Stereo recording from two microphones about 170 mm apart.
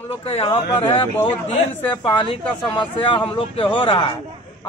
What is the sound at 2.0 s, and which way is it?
A woman's voice, 30° left (ahead or behind).